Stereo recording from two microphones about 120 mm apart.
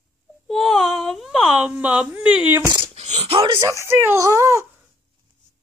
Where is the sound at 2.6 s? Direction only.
40° right (ahead or behind).